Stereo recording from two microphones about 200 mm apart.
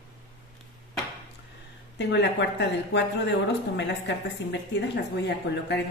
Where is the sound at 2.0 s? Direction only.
60° left (ahead or behind).